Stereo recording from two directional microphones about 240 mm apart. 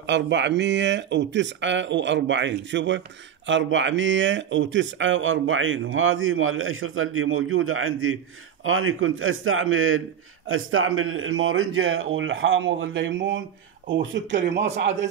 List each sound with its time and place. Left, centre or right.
0.0 s speech: right
14.5 s speech: right